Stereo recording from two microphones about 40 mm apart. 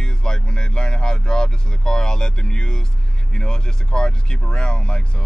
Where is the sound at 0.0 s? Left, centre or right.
Centre.